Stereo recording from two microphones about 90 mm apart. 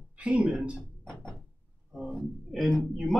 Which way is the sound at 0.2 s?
10° right (ahead or behind).